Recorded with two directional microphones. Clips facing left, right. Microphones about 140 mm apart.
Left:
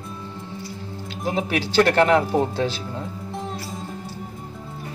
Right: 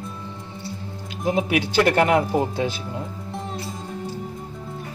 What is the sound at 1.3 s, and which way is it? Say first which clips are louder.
Speech: left 1 dB; 10° right (ahead or behind).